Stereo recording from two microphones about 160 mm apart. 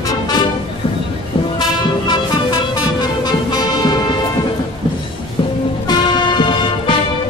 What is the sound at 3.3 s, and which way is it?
Music, 25° left (ahead or behind).